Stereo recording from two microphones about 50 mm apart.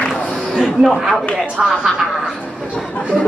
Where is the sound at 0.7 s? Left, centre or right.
Centre.